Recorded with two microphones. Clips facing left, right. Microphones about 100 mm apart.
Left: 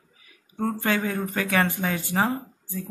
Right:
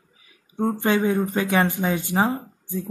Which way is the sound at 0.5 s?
20° right (ahead or behind).